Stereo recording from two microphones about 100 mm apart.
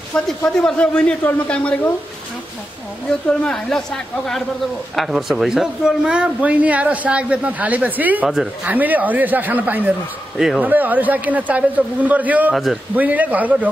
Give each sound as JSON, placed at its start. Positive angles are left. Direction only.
{"t": 0.1, "sound": "a man's voice", "side_deg": 5}
{"t": 3.1, "sound": "a woman's voice", "side_deg": 10}
{"t": 10.3, "sound": "a woman's voice", "side_deg": 0}
{"t": 10.6, "sound": "speech", "side_deg": -15}